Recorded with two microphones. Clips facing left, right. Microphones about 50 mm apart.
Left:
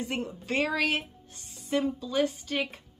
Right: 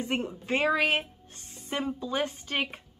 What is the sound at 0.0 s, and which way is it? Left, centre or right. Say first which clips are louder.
Speech: right 2 dB; right.